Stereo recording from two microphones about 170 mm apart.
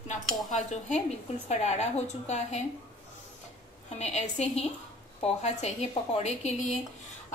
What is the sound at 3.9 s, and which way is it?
A woman's voice, 40° left (ahead or behind).